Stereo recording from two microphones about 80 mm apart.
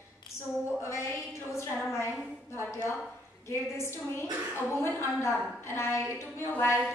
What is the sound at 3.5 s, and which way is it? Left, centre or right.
Speech, left.